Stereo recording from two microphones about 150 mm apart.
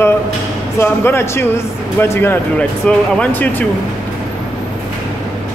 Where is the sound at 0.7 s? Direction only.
15° left (ahead or behind).